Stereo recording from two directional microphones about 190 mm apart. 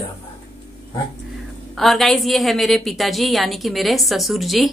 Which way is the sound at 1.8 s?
Centre (ahead or behind).